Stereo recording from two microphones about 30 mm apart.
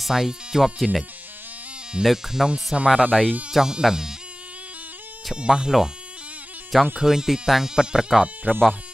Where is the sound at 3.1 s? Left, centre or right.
Centre.